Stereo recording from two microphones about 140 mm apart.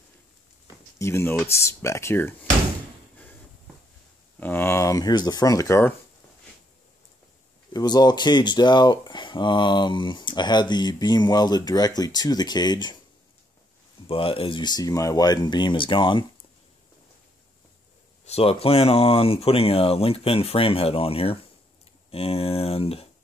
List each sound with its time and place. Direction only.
0.9 s speech: 20° left (ahead or behind)
4.4 s speech: 15° left (ahead or behind)
7.7 s speech: 30° left (ahead or behind)
14.0 s speech: 40° left (ahead or behind)
18.2 s speech: 45° left (ahead or behind)